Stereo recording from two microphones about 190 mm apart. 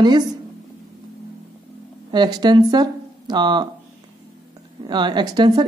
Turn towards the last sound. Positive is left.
turn(degrees=-25)  # may be behind; listen again after turning